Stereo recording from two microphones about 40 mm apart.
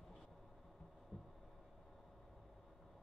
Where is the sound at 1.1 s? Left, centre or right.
Left.